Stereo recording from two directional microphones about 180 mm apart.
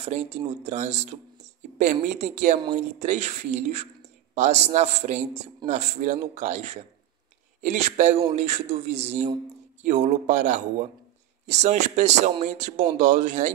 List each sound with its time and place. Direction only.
0.0 s speech: 35° right (ahead or behind)